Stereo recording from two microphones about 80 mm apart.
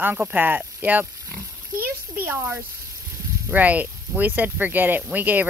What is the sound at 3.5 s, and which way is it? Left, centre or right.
Speech, centre.